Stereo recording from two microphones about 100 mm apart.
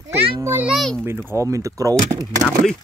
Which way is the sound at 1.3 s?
30° right (ahead or behind).